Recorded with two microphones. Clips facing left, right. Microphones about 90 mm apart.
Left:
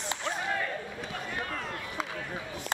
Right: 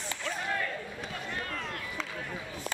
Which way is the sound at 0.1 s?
20° left (ahead or behind).